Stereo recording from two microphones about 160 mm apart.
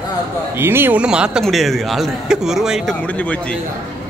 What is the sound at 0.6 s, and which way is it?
A man's voice, 15° right (ahead or behind).